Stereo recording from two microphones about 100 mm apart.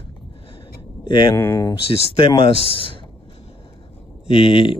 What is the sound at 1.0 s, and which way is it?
Speech, 55° left (ahead or behind).